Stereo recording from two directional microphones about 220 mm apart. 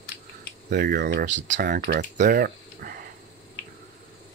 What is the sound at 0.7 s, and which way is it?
Speech, 45° right (ahead or behind).